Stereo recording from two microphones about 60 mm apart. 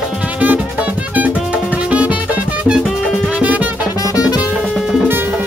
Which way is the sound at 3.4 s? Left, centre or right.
Right.